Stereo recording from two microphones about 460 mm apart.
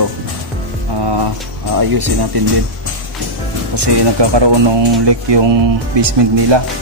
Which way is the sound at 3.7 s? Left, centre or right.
Right.